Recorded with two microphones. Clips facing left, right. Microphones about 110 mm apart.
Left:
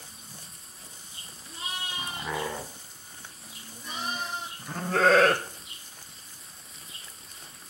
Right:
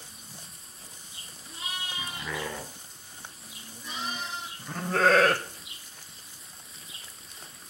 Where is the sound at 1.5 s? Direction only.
35° left (ahead or behind).